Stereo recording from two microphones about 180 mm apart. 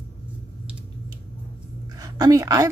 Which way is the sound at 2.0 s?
20° right (ahead or behind).